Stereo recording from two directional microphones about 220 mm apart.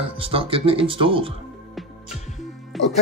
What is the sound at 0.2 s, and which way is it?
Speech, 25° right (ahead or behind).